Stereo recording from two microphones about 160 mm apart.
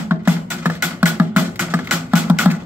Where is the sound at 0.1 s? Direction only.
10° right (ahead or behind).